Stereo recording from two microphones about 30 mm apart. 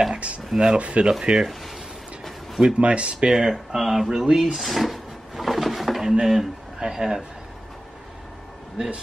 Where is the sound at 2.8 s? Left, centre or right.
Right.